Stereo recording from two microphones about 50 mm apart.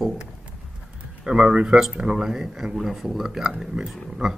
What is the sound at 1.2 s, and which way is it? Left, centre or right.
Speech, centre.